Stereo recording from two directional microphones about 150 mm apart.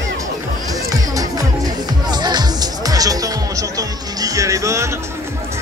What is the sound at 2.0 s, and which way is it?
Speech, 30° right (ahead or behind).